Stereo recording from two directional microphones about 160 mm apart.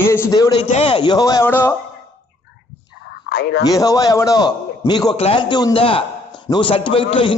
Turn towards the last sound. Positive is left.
turn(degrees=35)  # may be behind; listen again after turning